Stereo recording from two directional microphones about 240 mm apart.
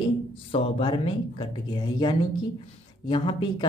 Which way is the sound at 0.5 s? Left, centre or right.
Left.